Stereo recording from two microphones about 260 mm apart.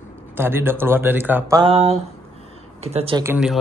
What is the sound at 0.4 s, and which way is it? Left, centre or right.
Speech, centre.